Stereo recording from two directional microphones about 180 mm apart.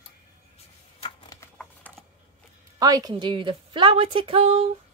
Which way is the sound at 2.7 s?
20° right (ahead or behind).